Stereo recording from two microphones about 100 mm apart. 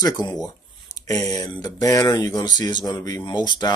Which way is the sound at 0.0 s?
45° left (ahead or behind).